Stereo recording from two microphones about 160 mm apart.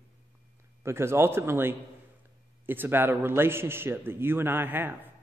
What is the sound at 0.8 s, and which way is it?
A man's voice, 15° right (ahead or behind).